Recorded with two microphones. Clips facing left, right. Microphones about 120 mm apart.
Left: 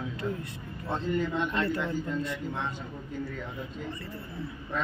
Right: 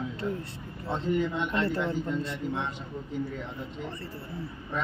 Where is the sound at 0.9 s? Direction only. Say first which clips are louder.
Right 1 dB; 15° right (ahead or behind).